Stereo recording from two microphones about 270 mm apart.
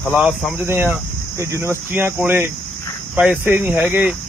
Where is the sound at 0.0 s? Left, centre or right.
Centre.